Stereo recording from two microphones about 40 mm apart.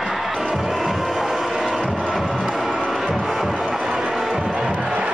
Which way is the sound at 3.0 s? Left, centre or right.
Centre.